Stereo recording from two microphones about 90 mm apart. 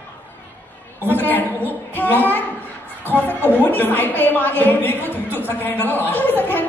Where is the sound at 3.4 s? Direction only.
20° left (ahead or behind).